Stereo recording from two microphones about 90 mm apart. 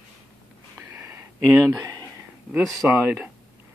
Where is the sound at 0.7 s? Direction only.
30° right (ahead or behind).